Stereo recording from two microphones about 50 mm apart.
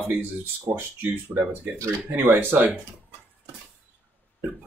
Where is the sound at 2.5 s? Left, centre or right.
Right.